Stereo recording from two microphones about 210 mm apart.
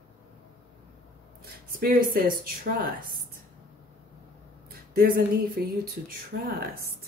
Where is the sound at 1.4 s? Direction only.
45° right (ahead or behind).